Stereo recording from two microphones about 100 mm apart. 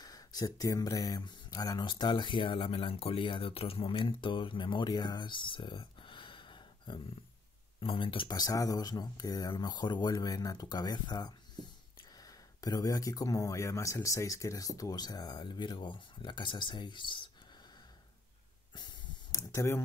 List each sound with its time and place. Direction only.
0.0 s speech: 40° left (ahead or behind)
7.8 s speech: 60° left (ahead or behind)
8.3 s speech: 40° left (ahead or behind); by 17.3 s 55° left (ahead or behind)
19.3 s speech: 30° left (ahead or behind)